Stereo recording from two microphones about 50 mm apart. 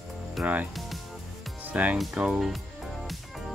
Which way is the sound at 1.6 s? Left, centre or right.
Right.